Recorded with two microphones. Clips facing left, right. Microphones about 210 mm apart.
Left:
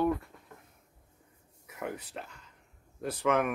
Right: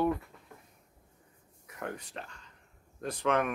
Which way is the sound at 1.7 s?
5° left (ahead or behind).